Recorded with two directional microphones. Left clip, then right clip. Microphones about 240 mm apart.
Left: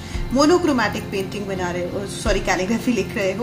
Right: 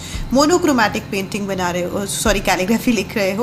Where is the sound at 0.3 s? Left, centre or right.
Right.